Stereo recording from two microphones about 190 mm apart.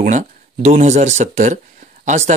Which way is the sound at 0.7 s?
35° right (ahead or behind).